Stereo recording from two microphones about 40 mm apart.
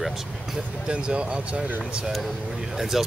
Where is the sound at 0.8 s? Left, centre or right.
Right.